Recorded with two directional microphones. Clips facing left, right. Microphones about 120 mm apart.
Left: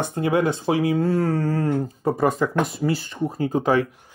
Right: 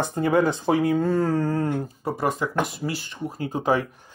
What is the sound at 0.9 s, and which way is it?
Speech, 5° left (ahead or behind).